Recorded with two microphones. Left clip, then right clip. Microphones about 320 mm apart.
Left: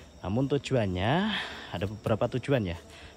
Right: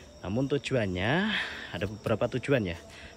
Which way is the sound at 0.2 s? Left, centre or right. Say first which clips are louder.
Left 1 dB; centre.